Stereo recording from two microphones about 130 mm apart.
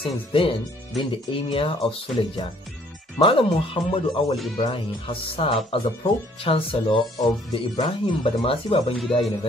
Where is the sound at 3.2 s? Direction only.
40° left (ahead or behind).